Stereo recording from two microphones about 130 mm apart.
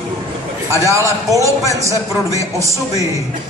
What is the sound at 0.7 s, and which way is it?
A woman's voice, 25° right (ahead or behind).